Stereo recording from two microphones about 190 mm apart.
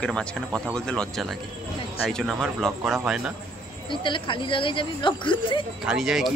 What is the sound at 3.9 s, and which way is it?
Speech, 25° left (ahead or behind).